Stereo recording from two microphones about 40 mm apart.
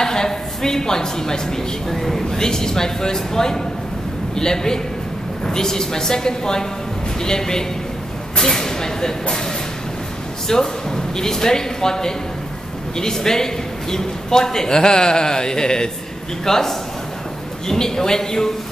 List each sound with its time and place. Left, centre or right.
0.0 s a sound: centre
1.9 s speech: centre
2.3 s a man's voice: centre
10.5 s a man's voice: centre